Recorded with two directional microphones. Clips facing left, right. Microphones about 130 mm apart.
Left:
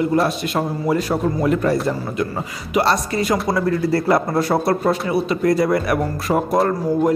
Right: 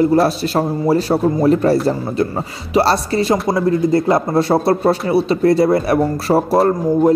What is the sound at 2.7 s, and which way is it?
Speech, 30° right (ahead or behind).